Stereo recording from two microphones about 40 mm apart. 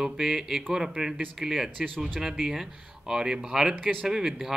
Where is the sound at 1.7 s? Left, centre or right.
Centre.